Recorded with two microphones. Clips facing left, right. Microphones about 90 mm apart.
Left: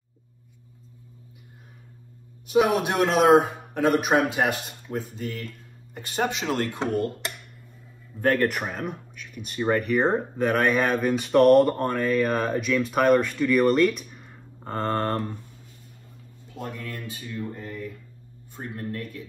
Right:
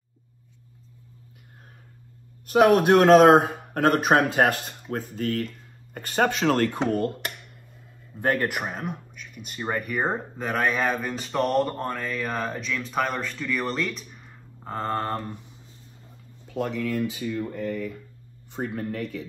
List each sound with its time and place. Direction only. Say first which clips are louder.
2.4 s speech: right 4 dB; 50° right (ahead or behind)
4.9 s speech: right 4 dB; 55° right (ahead or behind)
8.2 s a man's voice: left 2 dB; 10° right (ahead or behind)
16.4 s speech: right 8 dB; 75° right (ahead or behind)
17.6 s speech: right 6 dB; 70° right (ahead or behind)
18.6 s speech: right 4 dB; 90° right